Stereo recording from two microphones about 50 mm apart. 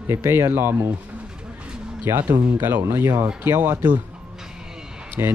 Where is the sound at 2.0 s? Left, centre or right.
Right.